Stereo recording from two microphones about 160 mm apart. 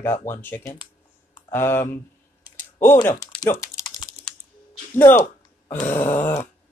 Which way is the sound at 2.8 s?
15° left (ahead or behind).